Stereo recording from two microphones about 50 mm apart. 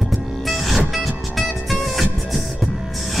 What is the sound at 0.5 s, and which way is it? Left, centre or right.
Music, centre.